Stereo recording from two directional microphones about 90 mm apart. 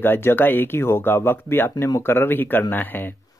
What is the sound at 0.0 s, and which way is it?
Speech, 25° left (ahead or behind).